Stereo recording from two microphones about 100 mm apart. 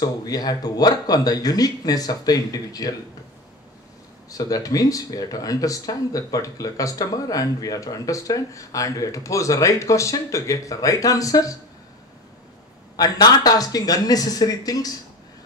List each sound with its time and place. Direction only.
0.0 s speech: 40° left (ahead or behind)
4.3 s speech: 35° left (ahead or behind)
12.9 s speech: 40° left (ahead or behind)